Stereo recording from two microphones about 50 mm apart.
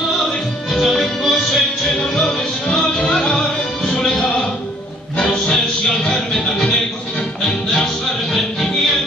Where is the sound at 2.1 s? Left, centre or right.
Centre.